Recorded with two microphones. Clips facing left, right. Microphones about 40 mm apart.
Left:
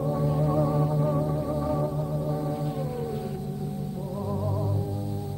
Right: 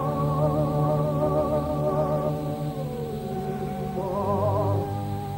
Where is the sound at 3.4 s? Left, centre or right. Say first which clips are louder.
Right 4 dB; right.